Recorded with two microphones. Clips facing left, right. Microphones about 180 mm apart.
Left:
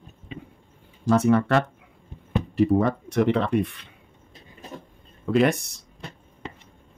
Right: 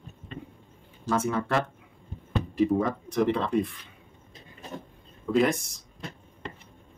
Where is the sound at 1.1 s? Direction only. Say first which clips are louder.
Left 8 dB; 70° left (ahead or behind).